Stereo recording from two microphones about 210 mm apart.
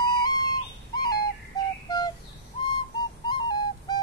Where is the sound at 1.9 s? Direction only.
20° left (ahead or behind).